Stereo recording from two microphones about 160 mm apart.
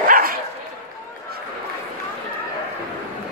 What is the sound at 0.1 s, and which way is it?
Dog, 65° right (ahead or behind).